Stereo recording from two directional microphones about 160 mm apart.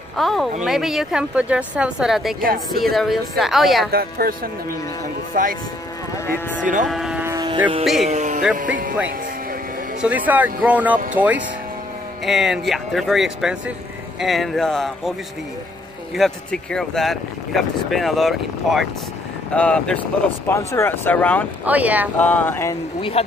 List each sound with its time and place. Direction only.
0.2 s speech: centre (ahead or behind)
3.9 s speech: 70° right (ahead or behind)
5.3 s speech: 60° right (ahead or behind)
6.6 s speech: 55° right (ahead or behind)
6.9 s vehicle: 5° right (ahead or behind)
7.2 s a sound: 25° right (ahead or behind)
7.8 s speech: centre (ahead or behind)
8.1 s speech: 45° right (ahead or behind)
10.0 s speech: 10° right (ahead or behind)
16.2 s speech: centre (ahead or behind)
21.6 s speech: 10° right (ahead or behind)
22.2 s speech: 10° left (ahead or behind)
22.9 s speech: 35° left (ahead or behind)